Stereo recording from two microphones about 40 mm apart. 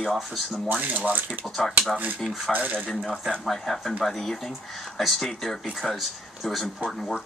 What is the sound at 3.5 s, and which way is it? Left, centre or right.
Speech, centre.